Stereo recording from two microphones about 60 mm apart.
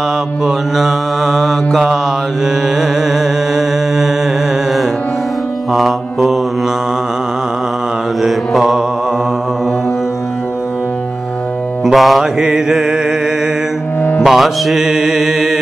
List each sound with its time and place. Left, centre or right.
0.7 s mantra: centre
2.8 s music: centre
5.7 s music: centre
8.2 s mantra: centre
11.8 s music: centre
12.2 s mantra: centre
14.2 s music: centre